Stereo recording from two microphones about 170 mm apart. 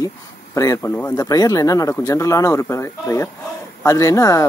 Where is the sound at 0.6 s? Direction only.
20° left (ahead or behind).